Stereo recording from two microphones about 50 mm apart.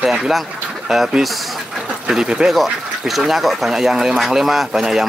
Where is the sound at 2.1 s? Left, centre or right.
Centre.